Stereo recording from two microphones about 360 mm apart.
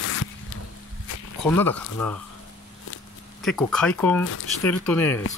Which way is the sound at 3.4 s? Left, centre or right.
Centre.